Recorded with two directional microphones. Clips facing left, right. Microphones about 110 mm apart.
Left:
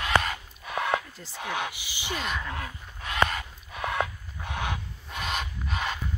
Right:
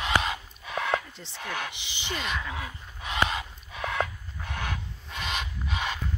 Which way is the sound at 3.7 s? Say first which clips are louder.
Left 1 dB; 5° left (ahead or behind).